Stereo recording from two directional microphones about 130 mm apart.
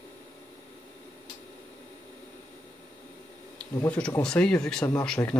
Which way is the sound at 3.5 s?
10° left (ahead or behind).